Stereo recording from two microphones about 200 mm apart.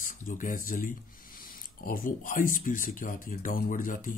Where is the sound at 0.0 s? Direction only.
40° left (ahead or behind).